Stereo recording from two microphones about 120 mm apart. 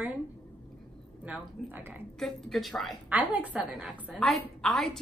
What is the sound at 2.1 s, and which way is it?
Speech, centre (ahead or behind).